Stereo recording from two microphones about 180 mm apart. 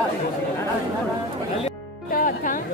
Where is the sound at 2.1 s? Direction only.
50° left (ahead or behind).